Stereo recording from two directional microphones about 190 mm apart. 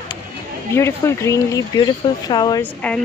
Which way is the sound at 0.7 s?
15° left (ahead or behind).